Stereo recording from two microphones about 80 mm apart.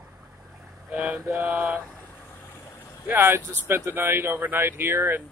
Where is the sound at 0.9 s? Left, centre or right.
Centre.